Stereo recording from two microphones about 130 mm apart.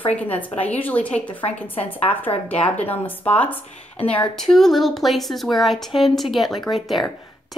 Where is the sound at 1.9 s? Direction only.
15° left (ahead or behind).